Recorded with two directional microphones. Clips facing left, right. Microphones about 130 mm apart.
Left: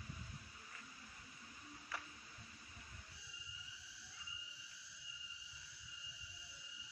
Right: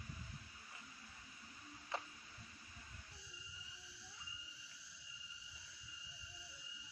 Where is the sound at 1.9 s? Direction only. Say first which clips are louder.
Right 5 dB; 25° right (ahead or behind).